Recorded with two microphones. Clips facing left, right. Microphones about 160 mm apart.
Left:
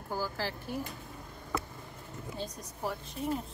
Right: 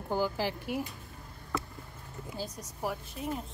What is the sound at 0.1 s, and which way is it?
Speech, 15° right (ahead or behind).